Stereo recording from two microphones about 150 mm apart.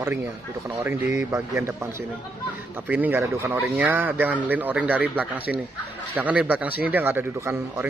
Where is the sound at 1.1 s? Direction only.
20° right (ahead or behind).